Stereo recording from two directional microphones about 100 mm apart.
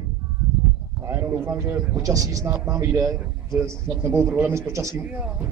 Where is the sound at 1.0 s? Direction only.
25° right (ahead or behind).